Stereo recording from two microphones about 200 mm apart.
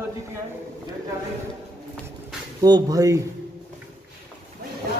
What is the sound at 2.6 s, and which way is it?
Speech, 20° right (ahead or behind).